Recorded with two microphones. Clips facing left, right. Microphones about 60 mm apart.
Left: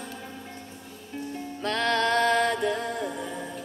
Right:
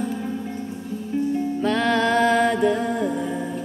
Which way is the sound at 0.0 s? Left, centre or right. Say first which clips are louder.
Right 12 dB; centre.